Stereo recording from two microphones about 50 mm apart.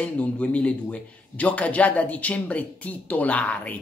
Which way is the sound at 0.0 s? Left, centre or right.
Left.